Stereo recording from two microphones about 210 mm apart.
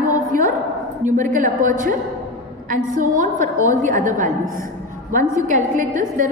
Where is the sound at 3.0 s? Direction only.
35° right (ahead or behind).